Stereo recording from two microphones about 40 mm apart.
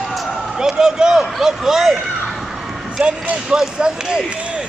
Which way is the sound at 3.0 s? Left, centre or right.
Centre.